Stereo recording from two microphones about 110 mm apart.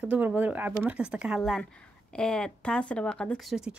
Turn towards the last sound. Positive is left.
turn(degrees=-5)  # may be behind; listen again after turning